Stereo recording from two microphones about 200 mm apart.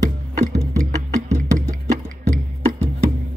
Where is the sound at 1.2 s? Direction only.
35° right (ahead or behind).